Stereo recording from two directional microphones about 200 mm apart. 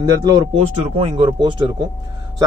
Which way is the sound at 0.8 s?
30° right (ahead or behind).